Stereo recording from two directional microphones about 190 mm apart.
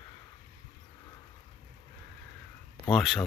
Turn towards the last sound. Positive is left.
turn(degrees=0)  # may be behind; listen again after turning